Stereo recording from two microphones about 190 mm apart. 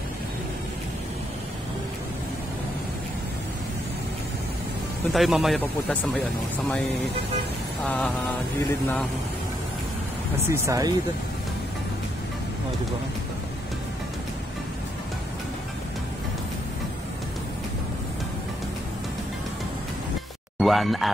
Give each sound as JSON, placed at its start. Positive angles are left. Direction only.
{"t": 5.1, "sound": "speech", "side_deg": 0}
{"t": 7.8, "sound": "speech", "side_deg": 10}
{"t": 10.5, "sound": "speech", "side_deg": -15}
{"t": 20.5, "sound": "speech", "side_deg": 0}